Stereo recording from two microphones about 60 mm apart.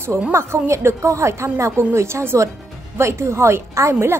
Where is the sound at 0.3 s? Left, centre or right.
Right.